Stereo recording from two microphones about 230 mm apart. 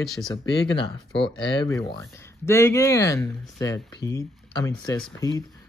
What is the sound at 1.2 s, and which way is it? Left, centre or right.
Speech, centre.